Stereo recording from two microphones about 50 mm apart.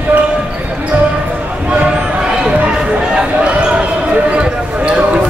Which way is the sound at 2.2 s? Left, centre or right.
Centre.